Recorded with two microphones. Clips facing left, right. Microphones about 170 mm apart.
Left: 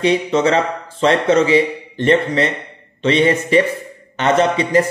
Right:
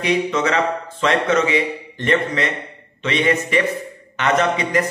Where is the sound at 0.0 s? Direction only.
30° left (ahead or behind).